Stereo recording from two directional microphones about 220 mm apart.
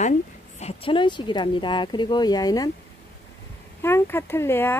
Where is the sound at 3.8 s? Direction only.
10° left (ahead or behind).